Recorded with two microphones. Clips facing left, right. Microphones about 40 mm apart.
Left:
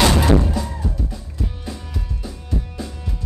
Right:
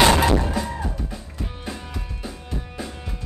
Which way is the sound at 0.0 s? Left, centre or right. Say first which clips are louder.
Even; centre.